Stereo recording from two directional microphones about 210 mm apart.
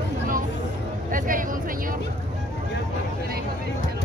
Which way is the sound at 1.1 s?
40° right (ahead or behind).